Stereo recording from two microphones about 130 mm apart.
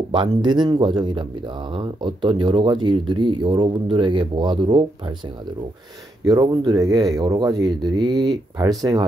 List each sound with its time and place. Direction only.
0.1 s speech: 35° right (ahead or behind)
6.2 s speech: 30° right (ahead or behind)